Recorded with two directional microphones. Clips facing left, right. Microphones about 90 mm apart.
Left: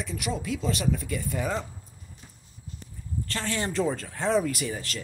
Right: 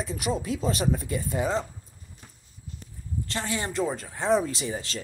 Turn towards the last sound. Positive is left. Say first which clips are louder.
# right 1 dB
turn(degrees=-25)  # may be behind; listen again after turning